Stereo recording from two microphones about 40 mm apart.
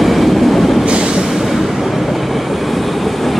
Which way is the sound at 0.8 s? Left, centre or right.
Right.